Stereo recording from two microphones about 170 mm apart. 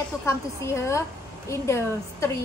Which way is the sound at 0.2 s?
15° left (ahead or behind).